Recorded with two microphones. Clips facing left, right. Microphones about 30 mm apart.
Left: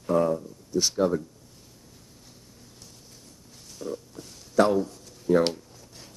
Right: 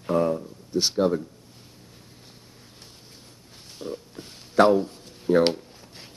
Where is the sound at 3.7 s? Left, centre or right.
Right.